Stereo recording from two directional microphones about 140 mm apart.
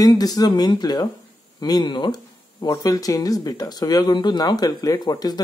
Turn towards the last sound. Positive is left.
turn(degrees=30)  # may be behind; listen again after turning